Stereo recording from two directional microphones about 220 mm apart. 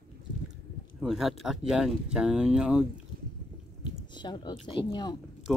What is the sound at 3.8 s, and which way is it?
Speech, 20° left (ahead or behind).